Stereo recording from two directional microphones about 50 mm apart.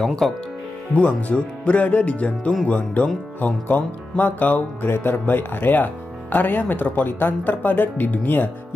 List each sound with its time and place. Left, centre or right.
0.0 s speech: centre
0.9 s speech: left
4.8 s speech: left